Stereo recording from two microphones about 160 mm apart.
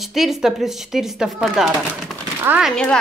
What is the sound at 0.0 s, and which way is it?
A woman's voice, centre (ahead or behind).